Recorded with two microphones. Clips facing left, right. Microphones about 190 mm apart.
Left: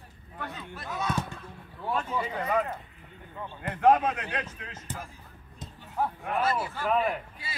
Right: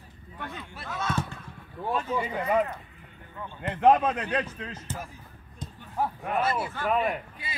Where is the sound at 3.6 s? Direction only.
25° right (ahead or behind).